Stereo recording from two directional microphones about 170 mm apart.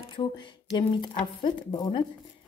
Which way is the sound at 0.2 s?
30° left (ahead or behind).